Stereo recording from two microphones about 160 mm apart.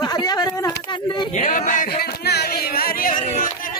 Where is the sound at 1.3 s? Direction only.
50° left (ahead or behind).